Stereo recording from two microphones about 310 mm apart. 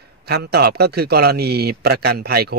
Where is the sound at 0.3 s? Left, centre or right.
Right.